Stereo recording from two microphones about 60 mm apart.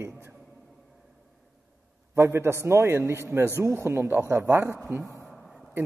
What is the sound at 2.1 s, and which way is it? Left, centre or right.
A man's voice, right.